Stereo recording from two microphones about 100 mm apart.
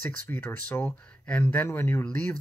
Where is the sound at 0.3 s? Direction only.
15° left (ahead or behind).